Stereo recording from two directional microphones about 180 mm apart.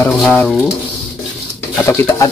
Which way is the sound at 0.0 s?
10° left (ahead or behind).